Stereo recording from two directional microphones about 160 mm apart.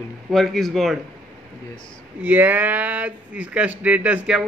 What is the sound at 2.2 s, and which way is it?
Speech, 10° right (ahead or behind).